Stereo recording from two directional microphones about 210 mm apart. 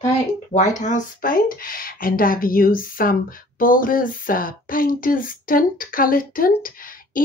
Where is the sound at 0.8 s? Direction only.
40° left (ahead or behind).